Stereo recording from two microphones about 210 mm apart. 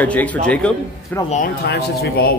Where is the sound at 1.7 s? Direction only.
50° left (ahead or behind).